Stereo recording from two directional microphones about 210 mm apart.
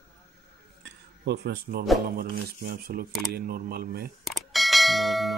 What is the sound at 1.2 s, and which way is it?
Speech, 50° right (ahead or behind).